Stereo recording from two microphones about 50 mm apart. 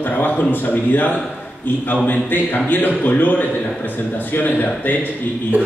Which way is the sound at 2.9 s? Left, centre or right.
Left.